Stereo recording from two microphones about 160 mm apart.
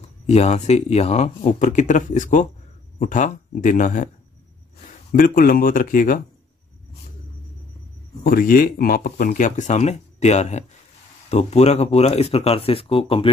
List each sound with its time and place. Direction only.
0.3 s speech: 40° left (ahead or behind)
5.1 s a man's voice: 60° left (ahead or behind)
8.2 s speech: 65° left (ahead or behind); by 13.3 s 35° left (ahead or behind)